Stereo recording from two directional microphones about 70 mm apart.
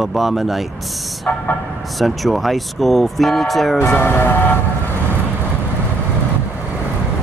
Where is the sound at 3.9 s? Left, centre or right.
Left.